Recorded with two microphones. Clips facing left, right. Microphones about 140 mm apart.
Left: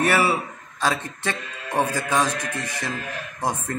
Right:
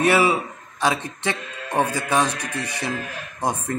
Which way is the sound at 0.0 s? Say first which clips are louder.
Right 2 dB; 15° right (ahead or behind).